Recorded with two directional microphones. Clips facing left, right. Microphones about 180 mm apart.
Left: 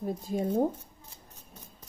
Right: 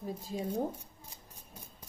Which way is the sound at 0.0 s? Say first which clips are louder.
Left 6 dB; 50° left (ahead or behind).